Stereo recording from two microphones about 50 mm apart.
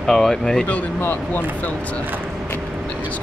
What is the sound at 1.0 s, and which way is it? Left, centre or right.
Speech, left.